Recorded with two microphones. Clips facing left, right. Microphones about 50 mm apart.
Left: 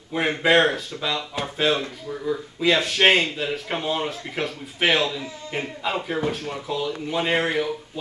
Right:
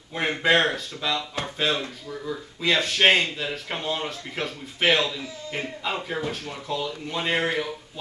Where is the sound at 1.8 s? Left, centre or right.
Left.